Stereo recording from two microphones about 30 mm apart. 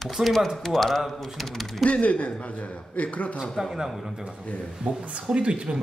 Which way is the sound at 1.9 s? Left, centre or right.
Left.